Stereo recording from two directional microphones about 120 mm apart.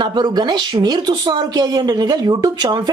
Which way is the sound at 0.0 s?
35° right (ahead or behind).